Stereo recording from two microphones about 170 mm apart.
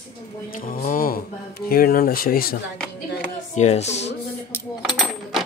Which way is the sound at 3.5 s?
40° left (ahead or behind).